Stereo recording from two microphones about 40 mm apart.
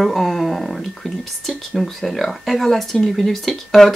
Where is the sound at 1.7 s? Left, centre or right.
Centre.